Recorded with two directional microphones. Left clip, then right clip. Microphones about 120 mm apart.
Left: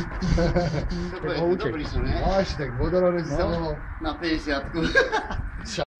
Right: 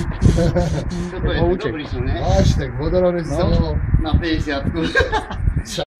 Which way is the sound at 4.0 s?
20° left (ahead or behind).